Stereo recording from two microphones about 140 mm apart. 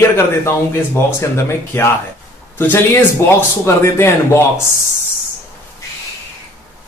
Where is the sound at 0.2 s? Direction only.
15° left (ahead or behind).